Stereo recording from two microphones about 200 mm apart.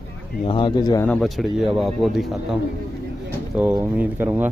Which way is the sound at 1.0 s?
Centre (ahead or behind).